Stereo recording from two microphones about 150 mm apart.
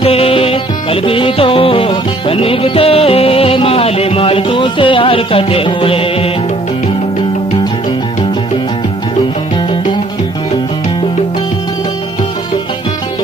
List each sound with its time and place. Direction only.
0.0 s music: 40° left (ahead or behind)